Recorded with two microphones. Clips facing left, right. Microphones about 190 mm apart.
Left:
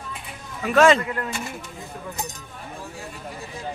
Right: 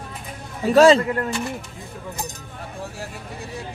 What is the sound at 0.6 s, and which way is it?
Speech, 35° right (ahead or behind).